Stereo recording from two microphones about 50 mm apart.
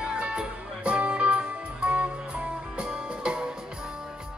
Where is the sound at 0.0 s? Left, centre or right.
Right.